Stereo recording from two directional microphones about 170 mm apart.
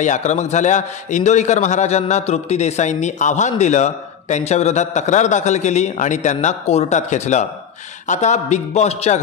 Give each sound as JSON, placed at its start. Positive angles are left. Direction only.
{"t": 0.0, "sound": "a man's voice", "side_deg": 45}